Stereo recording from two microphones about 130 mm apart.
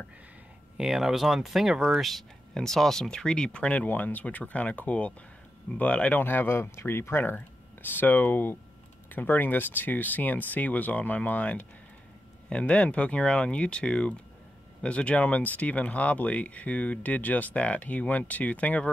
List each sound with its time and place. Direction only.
0.7 s speech: 5° right (ahead or behind)